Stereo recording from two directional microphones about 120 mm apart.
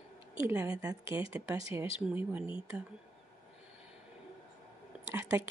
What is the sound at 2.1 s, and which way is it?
Speech, 15° right (ahead or behind).